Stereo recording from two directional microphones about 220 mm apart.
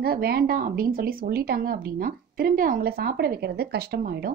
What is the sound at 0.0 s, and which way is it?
Speech, 45° right (ahead or behind).